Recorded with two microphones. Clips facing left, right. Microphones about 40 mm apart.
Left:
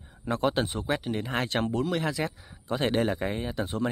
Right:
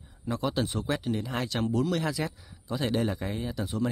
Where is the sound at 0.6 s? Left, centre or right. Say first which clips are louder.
Left 1 dB; left.